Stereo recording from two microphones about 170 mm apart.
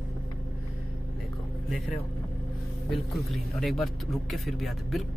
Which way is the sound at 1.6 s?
Centre (ahead or behind).